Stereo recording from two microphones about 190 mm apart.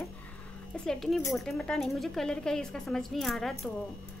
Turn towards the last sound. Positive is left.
turn(degrees=0)  # may be behind; listen again after turning